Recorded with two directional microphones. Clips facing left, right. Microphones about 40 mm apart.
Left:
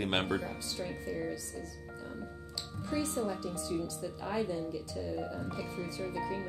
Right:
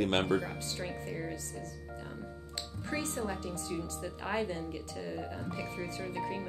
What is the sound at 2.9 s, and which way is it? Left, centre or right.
Speech, right.